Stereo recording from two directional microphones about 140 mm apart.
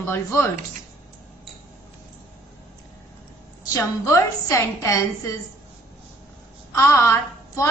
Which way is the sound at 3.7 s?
20° left (ahead or behind).